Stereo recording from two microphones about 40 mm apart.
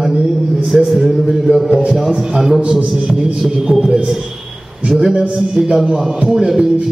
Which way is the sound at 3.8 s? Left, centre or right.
Centre.